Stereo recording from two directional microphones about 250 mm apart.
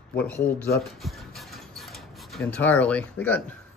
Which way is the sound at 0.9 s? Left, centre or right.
Centre.